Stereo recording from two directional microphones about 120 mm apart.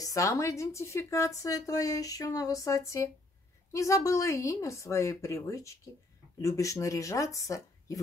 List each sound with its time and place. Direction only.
0.0 s speech: 25° left (ahead or behind)